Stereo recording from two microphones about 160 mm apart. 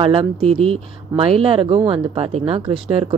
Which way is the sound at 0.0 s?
35° right (ahead or behind).